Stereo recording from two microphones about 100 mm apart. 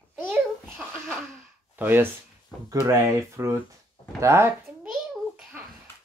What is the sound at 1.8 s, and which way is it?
Speech, 20° right (ahead or behind).